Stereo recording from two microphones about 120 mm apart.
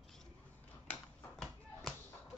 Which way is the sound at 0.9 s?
Centre (ahead or behind).